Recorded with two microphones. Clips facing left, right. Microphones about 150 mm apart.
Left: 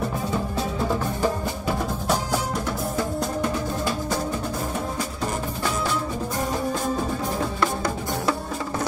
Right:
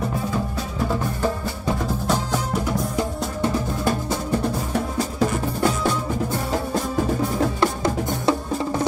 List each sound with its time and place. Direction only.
7.6 s music: 25° right (ahead or behind)